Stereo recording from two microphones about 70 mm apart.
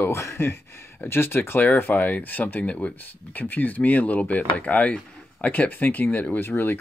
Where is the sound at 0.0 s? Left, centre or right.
Left.